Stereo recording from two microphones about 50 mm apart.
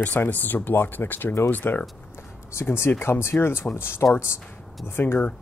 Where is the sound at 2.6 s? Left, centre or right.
Left.